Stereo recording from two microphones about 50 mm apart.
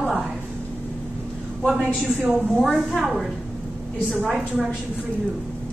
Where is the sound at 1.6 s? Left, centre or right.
Centre.